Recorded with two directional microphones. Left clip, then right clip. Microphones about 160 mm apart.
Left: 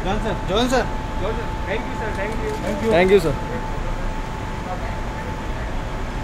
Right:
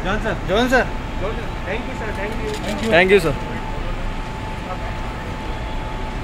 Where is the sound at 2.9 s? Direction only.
Centre (ahead or behind).